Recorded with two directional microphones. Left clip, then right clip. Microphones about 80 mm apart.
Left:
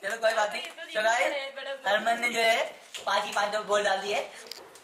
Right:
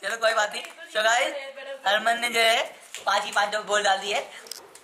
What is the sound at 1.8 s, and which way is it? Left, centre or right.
Speech, centre.